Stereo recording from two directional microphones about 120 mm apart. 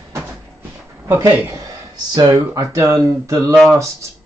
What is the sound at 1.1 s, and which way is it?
Speech, 15° right (ahead or behind).